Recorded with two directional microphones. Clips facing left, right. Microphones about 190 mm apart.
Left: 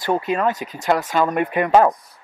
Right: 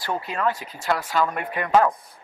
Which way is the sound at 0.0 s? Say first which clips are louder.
Left 6 dB; 20° left (ahead or behind).